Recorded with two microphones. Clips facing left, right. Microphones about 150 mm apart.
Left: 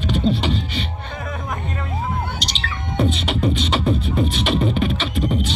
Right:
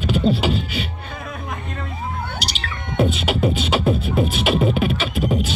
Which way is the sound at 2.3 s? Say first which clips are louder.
Left 1 dB; 5° right (ahead or behind).